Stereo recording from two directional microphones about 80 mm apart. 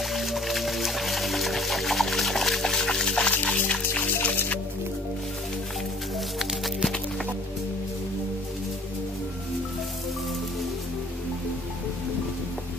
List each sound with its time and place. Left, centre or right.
0.0 s music: centre; by 4.6 s left
6.1 s music: centre